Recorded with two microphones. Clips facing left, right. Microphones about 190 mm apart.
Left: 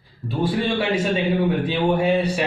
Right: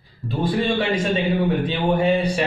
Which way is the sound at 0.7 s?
10° left (ahead or behind).